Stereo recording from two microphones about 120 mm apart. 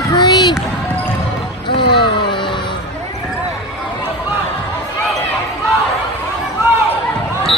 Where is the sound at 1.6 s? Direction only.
40° left (ahead or behind).